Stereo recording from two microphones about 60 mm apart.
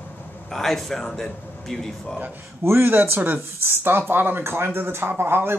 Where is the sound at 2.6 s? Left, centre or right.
Right.